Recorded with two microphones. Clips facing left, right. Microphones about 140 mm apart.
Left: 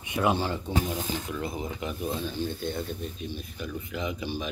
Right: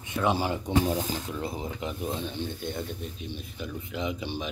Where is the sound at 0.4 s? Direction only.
15° right (ahead or behind).